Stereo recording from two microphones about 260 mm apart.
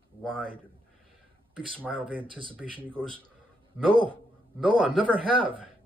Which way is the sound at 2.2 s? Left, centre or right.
Centre.